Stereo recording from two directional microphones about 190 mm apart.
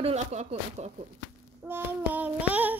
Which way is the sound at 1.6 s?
10° right (ahead or behind).